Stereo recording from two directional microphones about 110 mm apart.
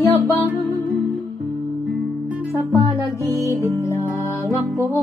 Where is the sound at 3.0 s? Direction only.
30° right (ahead or behind).